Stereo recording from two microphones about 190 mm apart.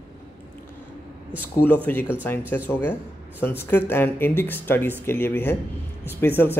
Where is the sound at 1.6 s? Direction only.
10° left (ahead or behind).